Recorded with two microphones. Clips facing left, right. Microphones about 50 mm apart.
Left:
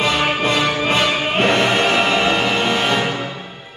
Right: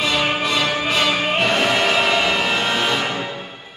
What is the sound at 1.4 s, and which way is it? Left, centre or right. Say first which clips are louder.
Music: left 4 dB; left.